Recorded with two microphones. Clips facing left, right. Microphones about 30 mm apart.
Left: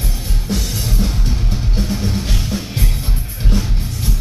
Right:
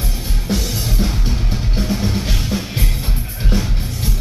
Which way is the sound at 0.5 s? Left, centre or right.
Centre.